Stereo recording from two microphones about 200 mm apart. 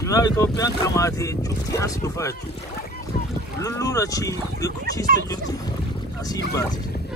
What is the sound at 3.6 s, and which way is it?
Speech, 15° left (ahead or behind).